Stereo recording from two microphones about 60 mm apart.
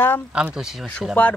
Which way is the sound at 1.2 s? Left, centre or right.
Left.